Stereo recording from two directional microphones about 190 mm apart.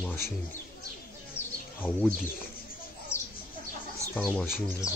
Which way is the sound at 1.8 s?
5° right (ahead or behind).